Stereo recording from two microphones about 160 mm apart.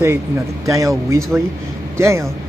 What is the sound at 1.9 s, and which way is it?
Speech, 15° right (ahead or behind).